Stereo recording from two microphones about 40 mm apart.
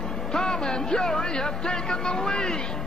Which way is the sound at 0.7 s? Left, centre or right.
Centre.